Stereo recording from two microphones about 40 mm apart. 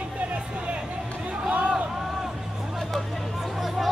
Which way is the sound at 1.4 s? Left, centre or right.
Right.